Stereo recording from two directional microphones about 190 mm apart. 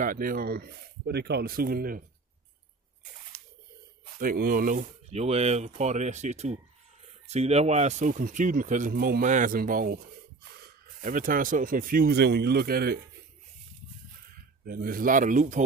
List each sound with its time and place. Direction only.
0.0 s speech: 50° right (ahead or behind)
4.2 s speech: 50° right (ahead or behind)
11.0 s speech: 45° right (ahead or behind)
14.6 s speech: 50° right (ahead or behind)